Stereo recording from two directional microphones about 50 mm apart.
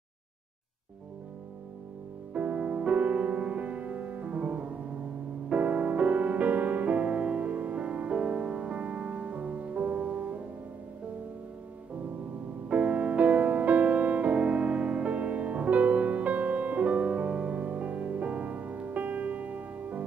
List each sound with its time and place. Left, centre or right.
2.3 s music: right
12.6 s music: right